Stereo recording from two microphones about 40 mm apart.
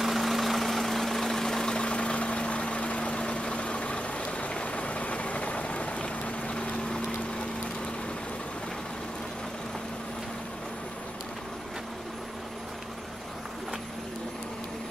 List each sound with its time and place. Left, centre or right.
0.0 s vehicle: centre; by 7.2 s left